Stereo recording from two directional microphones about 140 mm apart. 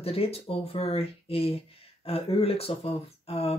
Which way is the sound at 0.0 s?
45° left (ahead or behind).